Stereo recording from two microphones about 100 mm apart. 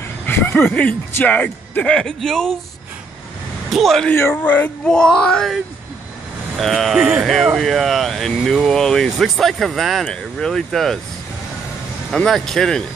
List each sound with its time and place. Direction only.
0.3 s speech: 20° left (ahead or behind)
3.7 s speech: centre (ahead or behind)
4.4 s speech: 20° left (ahead or behind)
4.8 s speech: 10° left (ahead or behind)
6.6 s speech: centre (ahead or behind)
12.1 s speech: 5° left (ahead or behind)